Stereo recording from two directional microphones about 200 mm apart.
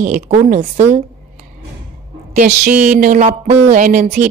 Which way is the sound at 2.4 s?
40° right (ahead or behind).